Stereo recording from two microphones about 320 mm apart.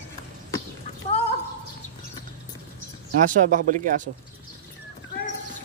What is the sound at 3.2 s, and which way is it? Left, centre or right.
Speech, right.